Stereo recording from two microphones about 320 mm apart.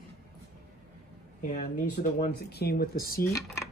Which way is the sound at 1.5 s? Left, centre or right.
Left.